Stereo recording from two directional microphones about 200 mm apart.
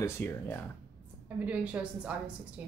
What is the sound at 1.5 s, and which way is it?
Speech, 5° right (ahead or behind).